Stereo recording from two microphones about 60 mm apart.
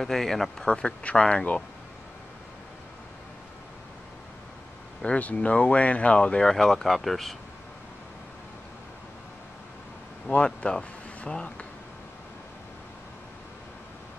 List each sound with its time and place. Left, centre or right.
0.0 s speech: centre
5.0 s speech: left
6.5 s speech: centre
10.2 s speech: centre